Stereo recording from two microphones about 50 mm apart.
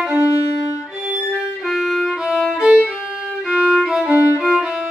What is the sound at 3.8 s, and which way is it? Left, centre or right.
Violin, centre.